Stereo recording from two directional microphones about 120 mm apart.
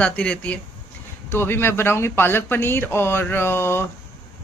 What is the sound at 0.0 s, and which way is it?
A woman's voice, 10° left (ahead or behind).